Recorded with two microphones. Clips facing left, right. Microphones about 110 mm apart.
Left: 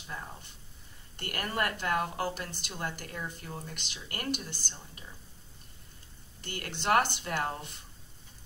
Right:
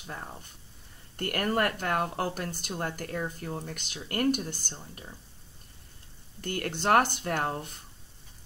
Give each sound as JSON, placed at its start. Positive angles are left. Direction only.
{"t": 0.0, "sound": "speech", "side_deg": -45}
{"t": 6.4, "sound": "speech", "side_deg": -45}